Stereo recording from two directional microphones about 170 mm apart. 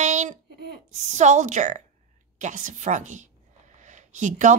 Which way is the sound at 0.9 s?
45° right (ahead or behind).